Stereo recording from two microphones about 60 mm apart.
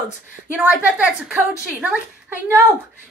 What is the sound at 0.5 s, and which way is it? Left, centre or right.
Speech, centre.